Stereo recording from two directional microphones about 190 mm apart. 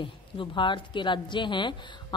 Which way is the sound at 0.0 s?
25° left (ahead or behind).